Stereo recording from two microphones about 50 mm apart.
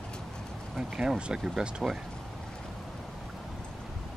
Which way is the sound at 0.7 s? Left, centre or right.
Centre.